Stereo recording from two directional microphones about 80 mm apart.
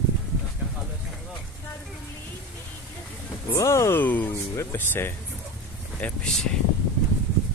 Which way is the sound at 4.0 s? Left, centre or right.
Left.